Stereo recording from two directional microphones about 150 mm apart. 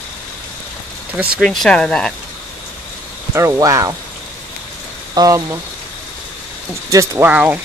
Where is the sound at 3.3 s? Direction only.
20° right (ahead or behind).